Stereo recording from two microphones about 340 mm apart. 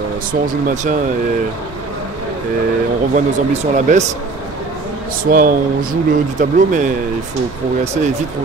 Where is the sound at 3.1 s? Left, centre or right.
Right.